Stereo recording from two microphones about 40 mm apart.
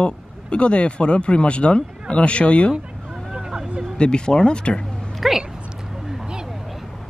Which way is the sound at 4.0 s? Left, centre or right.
Left.